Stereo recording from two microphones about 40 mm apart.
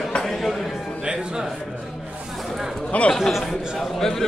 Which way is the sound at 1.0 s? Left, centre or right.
Centre.